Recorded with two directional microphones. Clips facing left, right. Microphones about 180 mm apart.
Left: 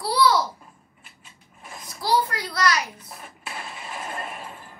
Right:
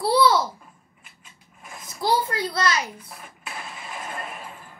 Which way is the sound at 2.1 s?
30° right (ahead or behind).